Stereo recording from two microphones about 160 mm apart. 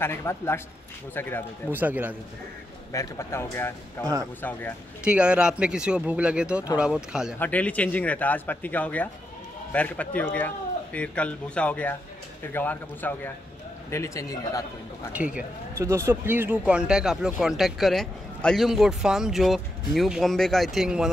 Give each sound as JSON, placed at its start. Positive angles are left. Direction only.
{"t": 0.0, "sound": "speech", "side_deg": 15}
{"t": 1.7, "sound": "speech", "side_deg": -10}
{"t": 2.9, "sound": "speech", "side_deg": 20}
{"t": 5.0, "sound": "speech", "side_deg": -5}
{"t": 7.3, "sound": "a man's voice", "side_deg": 10}
{"t": 15.1, "sound": "speech", "side_deg": -10}